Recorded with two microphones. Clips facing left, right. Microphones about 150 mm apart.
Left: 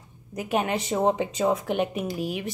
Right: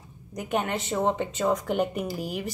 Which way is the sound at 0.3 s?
5° left (ahead or behind).